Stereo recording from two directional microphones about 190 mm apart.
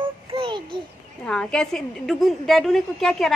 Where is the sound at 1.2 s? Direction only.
5° left (ahead or behind).